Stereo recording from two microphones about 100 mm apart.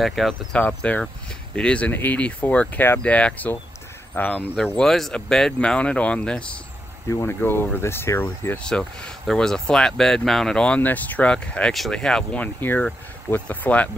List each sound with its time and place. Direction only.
0.0 s speech: centre (ahead or behind)
0.6 s speech: 15° left (ahead or behind)
4.7 s speech: 5° left (ahead or behind)
7.1 s speech: 25° left (ahead or behind)
8.6 s speech: 10° left (ahead or behind)